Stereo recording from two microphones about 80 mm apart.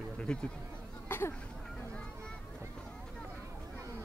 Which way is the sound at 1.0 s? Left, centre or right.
Left.